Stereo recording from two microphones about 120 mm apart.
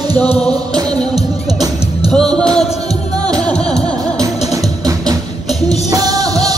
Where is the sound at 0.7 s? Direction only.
35° right (ahead or behind).